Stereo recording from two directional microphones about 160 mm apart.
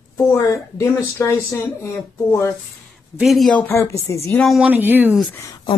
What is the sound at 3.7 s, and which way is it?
Speech, 15° left (ahead or behind).